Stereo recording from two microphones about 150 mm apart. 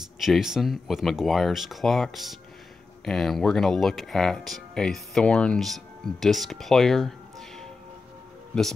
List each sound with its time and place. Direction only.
0.2 s speech: centre (ahead or behind)